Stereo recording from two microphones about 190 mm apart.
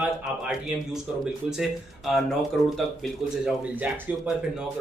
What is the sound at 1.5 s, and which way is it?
Speech, centre (ahead or behind).